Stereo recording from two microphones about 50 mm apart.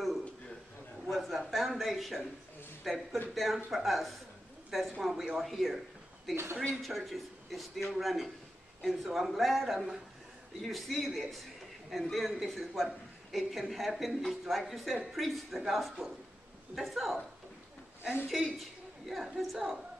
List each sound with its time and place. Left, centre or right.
1.0 s a man's voice: centre
18.3 s a man's voice: centre